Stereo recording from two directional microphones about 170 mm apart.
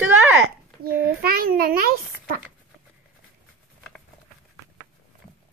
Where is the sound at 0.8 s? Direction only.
65° right (ahead or behind).